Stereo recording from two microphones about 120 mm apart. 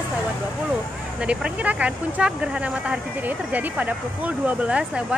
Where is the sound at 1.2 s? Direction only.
10° right (ahead or behind).